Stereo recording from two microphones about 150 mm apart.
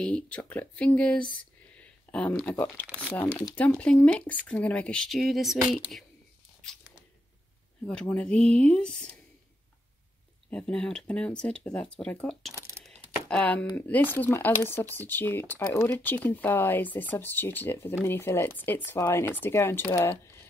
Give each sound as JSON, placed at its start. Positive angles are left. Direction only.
{"t": 0.0, "sound": "speech", "side_deg": 10}
{"t": 1.3, "sound": "a sound", "side_deg": 10}
{"t": 3.5, "sound": "speech", "side_deg": 10}
{"t": 7.8, "sound": "speech", "side_deg": 5}
{"t": 10.5, "sound": "speech", "side_deg": 5}